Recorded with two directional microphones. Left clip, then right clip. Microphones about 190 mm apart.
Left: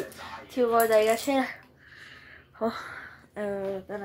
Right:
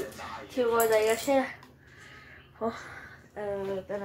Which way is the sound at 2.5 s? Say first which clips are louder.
Left 3 dB; 50° left (ahead or behind).